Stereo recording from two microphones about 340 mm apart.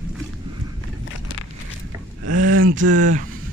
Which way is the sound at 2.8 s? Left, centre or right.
Right.